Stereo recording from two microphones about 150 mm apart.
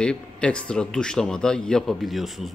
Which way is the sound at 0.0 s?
5° left (ahead or behind).